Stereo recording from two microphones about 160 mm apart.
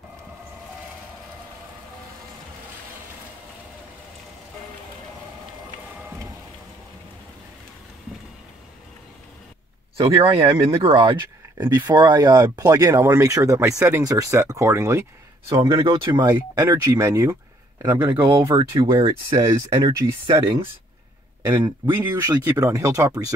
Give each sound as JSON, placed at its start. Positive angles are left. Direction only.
{"t": 10.2, "sound": "speech", "side_deg": -35}
{"t": 18.0, "sound": "speech", "side_deg": -30}
{"t": 19.3, "sound": "speech", "side_deg": -20}